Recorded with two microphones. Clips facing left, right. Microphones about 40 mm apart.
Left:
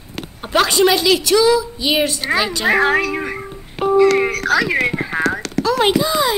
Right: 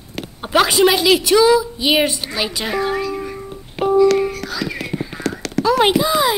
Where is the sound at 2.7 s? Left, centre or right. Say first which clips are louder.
Left 5 dB; left.